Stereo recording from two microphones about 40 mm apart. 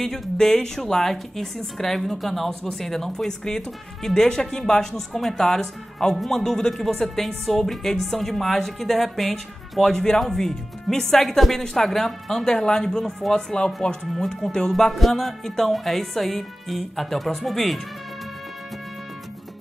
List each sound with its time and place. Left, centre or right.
0.0 s a woman's voice: centre
14.7 s speech: centre